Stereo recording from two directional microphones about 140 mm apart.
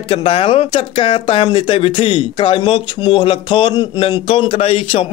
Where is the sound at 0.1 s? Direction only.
40° left (ahead or behind).